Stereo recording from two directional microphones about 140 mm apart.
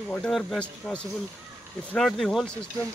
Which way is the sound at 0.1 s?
5° left (ahead or behind).